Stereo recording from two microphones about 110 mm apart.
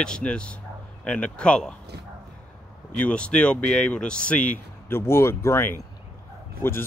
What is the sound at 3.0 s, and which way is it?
Speech, 10° left (ahead or behind).